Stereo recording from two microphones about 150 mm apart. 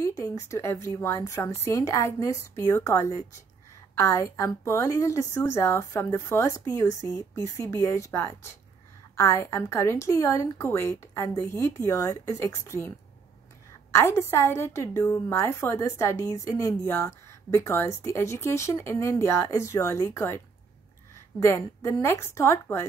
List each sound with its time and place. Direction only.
0.0 s a woman's voice: 20° left (ahead or behind)
13.9 s a woman's voice: 15° left (ahead or behind)